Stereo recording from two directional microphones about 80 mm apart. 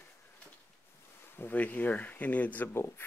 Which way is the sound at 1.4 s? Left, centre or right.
Left.